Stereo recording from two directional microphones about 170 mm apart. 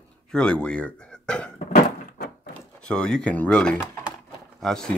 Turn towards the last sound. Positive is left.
turn(degrees=5)  # may be behind; listen again after turning